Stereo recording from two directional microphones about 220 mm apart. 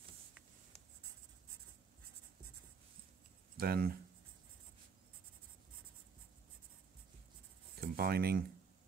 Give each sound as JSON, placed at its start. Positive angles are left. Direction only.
{"t": 3.5, "sound": "speech", "side_deg": -40}
{"t": 7.8, "sound": "speech", "side_deg": -45}